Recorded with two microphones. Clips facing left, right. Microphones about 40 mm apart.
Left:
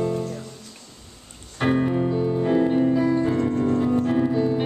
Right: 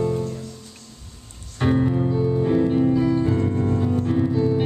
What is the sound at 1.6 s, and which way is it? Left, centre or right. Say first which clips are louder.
Music: right 1 dB; centre.